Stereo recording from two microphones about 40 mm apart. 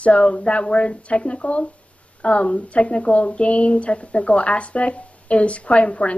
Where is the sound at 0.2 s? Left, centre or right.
Left.